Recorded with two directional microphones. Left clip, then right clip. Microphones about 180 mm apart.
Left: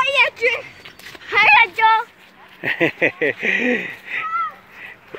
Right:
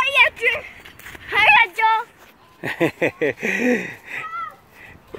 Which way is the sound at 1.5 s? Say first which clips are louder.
Left 1 dB; 15° right (ahead or behind).